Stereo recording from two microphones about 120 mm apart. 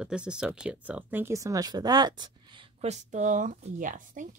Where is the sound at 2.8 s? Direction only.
70° right (ahead or behind); by 4.2 s 90° right.